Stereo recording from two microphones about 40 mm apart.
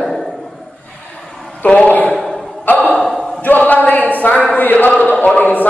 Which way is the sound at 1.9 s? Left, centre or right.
Left.